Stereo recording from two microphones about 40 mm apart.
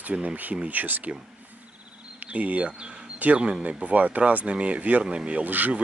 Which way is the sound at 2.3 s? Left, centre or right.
Right.